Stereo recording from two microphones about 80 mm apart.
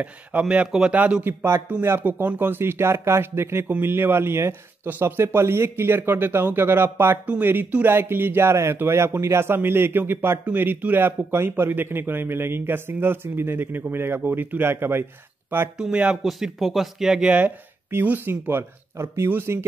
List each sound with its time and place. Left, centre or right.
0.0 s a man's voice: centre
1.8 s a man's voice: right
15.8 s a man's voice: centre
17.9 s a man's voice: right